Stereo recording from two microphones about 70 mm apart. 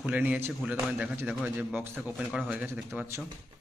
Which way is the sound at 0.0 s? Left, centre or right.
Centre.